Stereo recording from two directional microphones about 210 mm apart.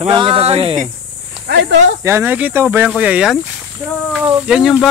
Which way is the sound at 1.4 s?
50° right (ahead or behind).